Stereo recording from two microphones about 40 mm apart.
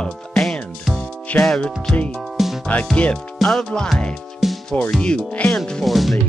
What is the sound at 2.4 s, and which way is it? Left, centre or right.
Music, centre.